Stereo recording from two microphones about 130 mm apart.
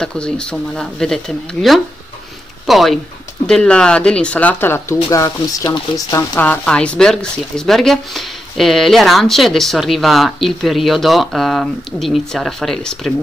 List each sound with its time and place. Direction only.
0.0 s speech: 5° left (ahead or behind); by 6.2 s 25° left (ahead or behind)
6.3 s speech: 10° left (ahead or behind)